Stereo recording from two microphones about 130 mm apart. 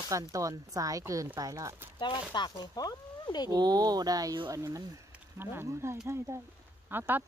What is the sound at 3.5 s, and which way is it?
Speech, 30° right (ahead or behind).